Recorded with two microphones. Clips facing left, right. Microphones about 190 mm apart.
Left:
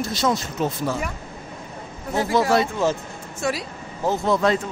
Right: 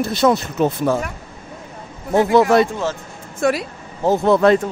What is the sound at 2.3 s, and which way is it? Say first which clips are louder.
Speech: right 5 dB; 60° right (ahead or behind).